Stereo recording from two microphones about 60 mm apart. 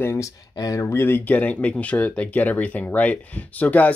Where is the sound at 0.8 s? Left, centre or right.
Left.